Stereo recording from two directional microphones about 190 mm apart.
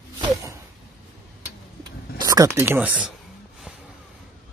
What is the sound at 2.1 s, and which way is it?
Speech, 20° right (ahead or behind).